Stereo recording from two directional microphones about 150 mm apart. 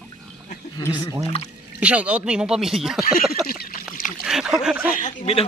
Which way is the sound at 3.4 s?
5° right (ahead or behind).